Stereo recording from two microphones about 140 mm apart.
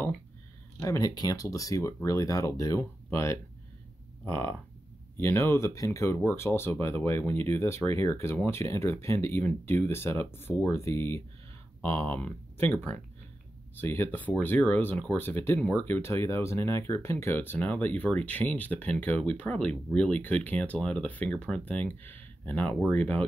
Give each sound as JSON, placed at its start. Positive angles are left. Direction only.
{"t": 0.7, "sound": "speech", "side_deg": 25}